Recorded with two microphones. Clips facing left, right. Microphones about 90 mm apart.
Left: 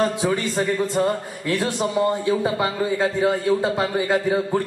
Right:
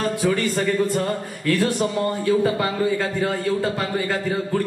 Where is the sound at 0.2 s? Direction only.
20° left (ahead or behind).